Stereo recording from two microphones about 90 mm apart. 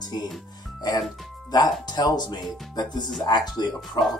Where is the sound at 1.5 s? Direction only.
50° left (ahead or behind).